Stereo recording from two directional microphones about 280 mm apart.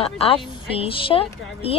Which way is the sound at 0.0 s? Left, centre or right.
Centre.